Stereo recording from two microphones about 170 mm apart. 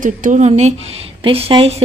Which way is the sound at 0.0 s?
50° right (ahead or behind).